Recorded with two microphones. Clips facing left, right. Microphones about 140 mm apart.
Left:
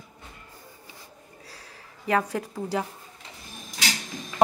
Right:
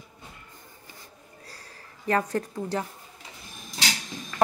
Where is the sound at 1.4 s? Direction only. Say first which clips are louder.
Right 1 dB; centre (ahead or behind).